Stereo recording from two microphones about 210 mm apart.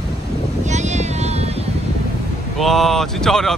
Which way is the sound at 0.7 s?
35° right (ahead or behind).